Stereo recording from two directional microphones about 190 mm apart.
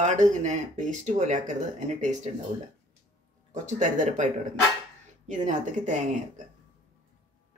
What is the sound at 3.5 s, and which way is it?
Speech, 40° right (ahead or behind).